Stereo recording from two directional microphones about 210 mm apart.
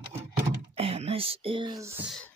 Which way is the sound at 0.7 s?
30° right (ahead or behind).